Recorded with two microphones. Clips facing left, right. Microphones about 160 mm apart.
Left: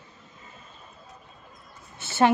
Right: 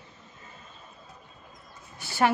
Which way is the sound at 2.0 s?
20° left (ahead or behind).